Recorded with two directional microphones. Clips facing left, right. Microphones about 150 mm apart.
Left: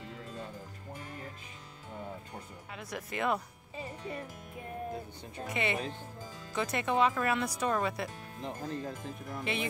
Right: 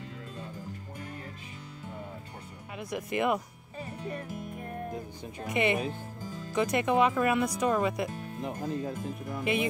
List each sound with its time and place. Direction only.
2.7 s speech: 10° right (ahead or behind)
5.5 s speech: 15° right (ahead or behind)